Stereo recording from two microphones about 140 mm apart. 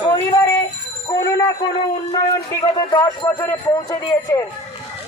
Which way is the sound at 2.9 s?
30° left (ahead or behind).